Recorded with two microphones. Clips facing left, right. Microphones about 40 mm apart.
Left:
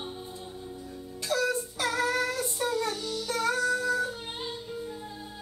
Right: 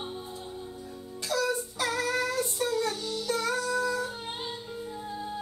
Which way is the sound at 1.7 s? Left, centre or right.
Left.